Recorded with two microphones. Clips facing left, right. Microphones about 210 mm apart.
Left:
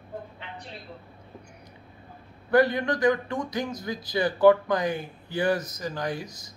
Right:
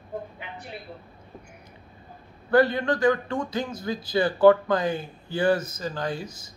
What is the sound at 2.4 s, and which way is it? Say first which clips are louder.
Speech: right 1 dB; 20° left (ahead or behind).